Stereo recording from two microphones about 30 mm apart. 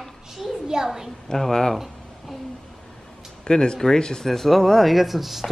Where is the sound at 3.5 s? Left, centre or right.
Left.